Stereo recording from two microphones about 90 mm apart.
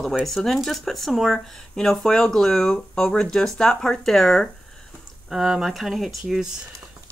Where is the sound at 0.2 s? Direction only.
5° left (ahead or behind).